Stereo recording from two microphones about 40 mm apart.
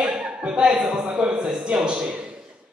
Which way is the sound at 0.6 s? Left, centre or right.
Centre.